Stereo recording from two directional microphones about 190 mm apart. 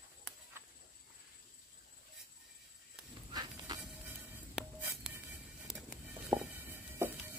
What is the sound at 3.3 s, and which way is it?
Insect, 20° right (ahead or behind).